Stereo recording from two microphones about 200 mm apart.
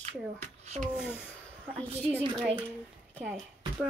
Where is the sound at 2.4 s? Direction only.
10° right (ahead or behind).